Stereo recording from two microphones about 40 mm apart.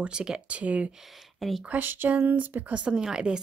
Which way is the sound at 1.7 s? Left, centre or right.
Right.